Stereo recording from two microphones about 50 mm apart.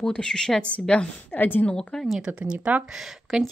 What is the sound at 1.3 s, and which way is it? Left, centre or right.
Speech, left.